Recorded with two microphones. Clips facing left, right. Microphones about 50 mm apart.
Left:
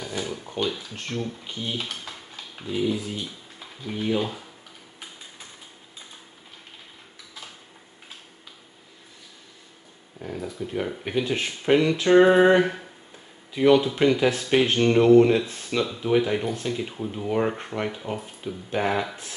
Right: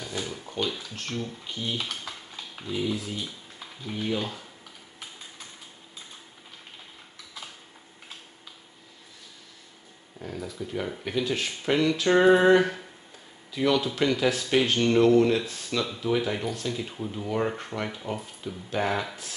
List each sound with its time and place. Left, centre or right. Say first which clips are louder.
0.0 s speech: left 3 dB; centre
10.1 s speech: left 3 dB; centre